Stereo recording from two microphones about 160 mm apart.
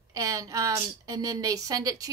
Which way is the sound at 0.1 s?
20° right (ahead or behind).